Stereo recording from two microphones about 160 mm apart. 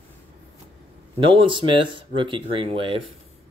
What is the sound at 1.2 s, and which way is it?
Speech, 30° right (ahead or behind).